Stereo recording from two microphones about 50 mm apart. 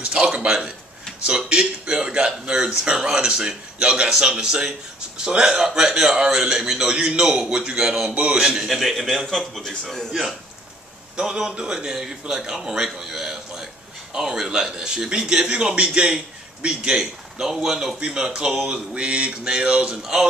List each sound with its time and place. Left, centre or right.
0.0 s a man's voice: centre
8.1 s speech: right
8.6 s a man's voice: centre
11.1 s a man's voice: centre